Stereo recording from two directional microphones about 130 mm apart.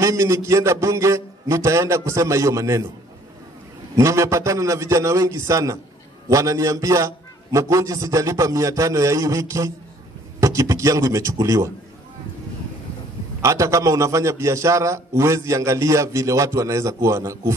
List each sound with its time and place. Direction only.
0.0 s a man's voice: 25° right (ahead or behind)
3.9 s a man's voice: 25° right (ahead or behind)
13.4 s a man's voice: 25° right (ahead or behind)